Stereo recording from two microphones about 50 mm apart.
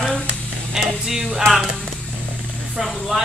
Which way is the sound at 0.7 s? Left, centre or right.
Centre.